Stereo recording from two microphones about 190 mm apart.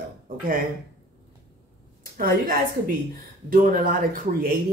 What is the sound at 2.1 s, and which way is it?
A woman's voice, 50° right (ahead or behind).